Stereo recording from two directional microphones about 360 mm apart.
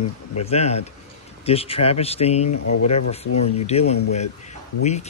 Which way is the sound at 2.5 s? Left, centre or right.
Left.